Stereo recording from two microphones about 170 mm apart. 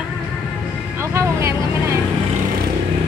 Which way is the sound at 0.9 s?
15° right (ahead or behind).